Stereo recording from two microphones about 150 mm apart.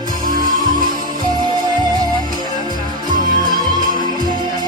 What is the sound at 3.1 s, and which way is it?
Music, 65° right (ahead or behind).